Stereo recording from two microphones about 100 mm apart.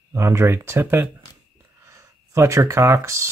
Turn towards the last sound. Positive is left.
turn(degrees=-30)  # may be behind; listen again after turning